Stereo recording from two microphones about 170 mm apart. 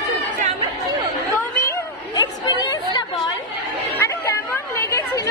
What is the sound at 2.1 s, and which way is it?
Chatter, 25° left (ahead or behind).